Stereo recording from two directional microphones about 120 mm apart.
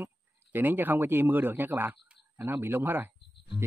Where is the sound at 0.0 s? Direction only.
15° right (ahead or behind).